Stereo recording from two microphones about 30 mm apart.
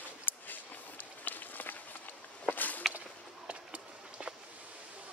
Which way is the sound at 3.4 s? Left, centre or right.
Right.